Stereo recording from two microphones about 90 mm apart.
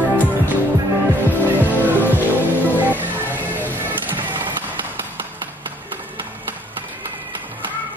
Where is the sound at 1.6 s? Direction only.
20° right (ahead or behind).